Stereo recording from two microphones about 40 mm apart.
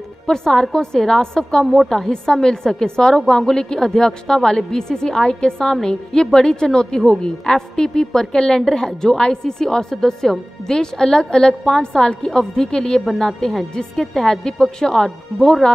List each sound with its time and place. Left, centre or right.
0.3 s a woman's voice: centre
1.6 s a woman's voice: centre